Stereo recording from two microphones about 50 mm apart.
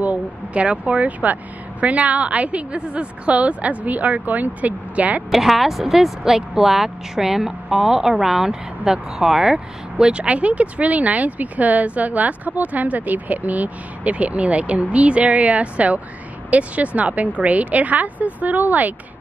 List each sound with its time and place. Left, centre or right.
0.5 s a woman's voice: right
5.3 s a woman's voice: centre; by 18.9 s right